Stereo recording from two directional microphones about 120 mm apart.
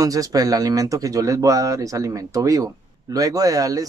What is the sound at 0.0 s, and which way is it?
Speech, 30° right (ahead or behind).